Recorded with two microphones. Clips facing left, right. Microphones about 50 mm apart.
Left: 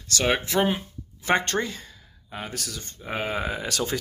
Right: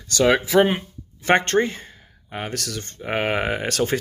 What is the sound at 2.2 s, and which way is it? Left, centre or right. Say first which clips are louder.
Speech: right 5 dB; right.